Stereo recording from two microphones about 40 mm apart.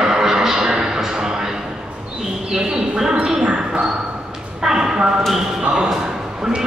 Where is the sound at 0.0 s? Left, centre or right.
Centre.